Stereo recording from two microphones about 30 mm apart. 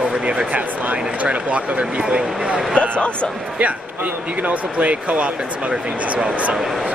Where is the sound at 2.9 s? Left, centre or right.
Left.